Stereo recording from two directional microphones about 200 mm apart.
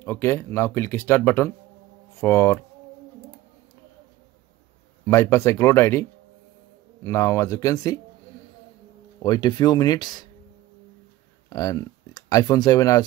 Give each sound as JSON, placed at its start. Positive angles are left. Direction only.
{"t": 0.0, "sound": "speech", "side_deg": 10}
{"t": 5.0, "sound": "speech", "side_deg": 15}
{"t": 7.1, "sound": "speech", "side_deg": 15}
{"t": 9.2, "sound": "speech", "side_deg": 20}
{"t": 11.4, "sound": "speech", "side_deg": 20}